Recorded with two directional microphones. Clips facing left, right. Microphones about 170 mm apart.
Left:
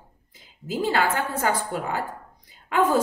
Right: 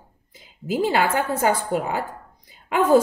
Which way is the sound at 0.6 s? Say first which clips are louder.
Right 3 dB; 15° right (ahead or behind).